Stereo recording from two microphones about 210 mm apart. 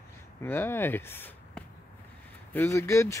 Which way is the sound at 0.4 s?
10° left (ahead or behind).